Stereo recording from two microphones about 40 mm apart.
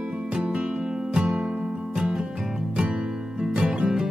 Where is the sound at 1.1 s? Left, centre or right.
Centre.